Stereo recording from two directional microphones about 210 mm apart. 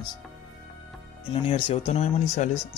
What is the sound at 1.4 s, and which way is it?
Speech, 25° left (ahead or behind).